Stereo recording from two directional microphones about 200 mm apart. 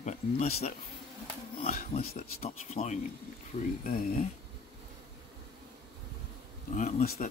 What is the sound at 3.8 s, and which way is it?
Speech, 45° left (ahead or behind).